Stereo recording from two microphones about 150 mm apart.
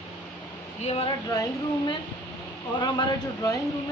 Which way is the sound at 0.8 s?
40° left (ahead or behind).